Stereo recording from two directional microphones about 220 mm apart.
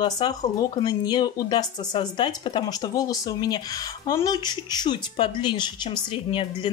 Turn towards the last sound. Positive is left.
turn(degrees=20)  # may be behind; listen again after turning